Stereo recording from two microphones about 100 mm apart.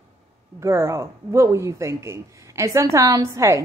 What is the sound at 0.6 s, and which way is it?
A woman's voice, 30° right (ahead or behind).